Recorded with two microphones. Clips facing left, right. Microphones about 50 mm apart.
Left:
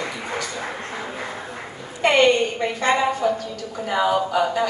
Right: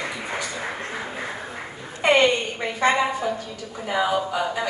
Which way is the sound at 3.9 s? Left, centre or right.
Centre.